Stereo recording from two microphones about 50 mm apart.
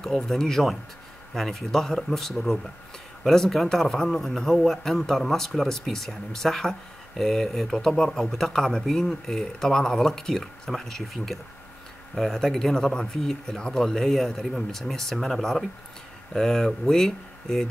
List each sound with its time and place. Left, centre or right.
0.0 s speech: centre